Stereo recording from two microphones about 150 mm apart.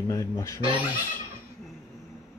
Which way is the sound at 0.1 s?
20° left (ahead or behind).